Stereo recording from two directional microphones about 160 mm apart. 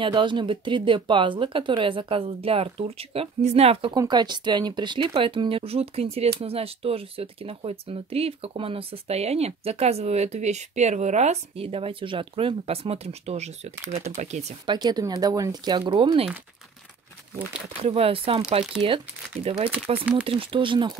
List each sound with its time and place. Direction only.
0.0 s speech: 30° right (ahead or behind)
3.9 s speech: 25° right (ahead or behind); by 14.4 s 45° right (ahead or behind)
14.7 s speech: 25° right (ahead or behind)
17.4 s speech: 10° right (ahead or behind)
17.8 s speech: 35° right (ahead or behind)
20.2 s speech: 35° right (ahead or behind)